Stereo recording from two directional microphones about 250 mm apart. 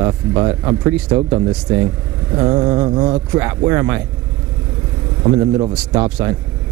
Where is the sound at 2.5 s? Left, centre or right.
Centre.